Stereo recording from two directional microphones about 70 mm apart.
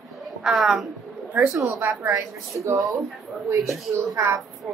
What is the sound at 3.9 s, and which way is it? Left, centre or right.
Speech, right.